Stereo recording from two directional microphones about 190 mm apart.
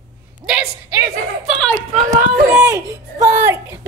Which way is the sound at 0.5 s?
10° right (ahead or behind).